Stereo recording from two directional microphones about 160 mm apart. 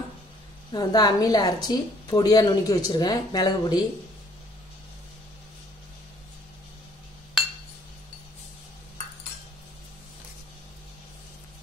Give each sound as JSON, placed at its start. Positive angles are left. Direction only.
{"t": 0.7, "sound": "a woman's voice", "side_deg": 25}